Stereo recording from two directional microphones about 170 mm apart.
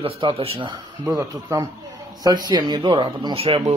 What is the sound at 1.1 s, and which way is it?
A man's voice, 20° right (ahead or behind).